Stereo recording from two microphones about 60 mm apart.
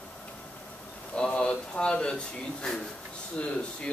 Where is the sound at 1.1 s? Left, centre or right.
Centre.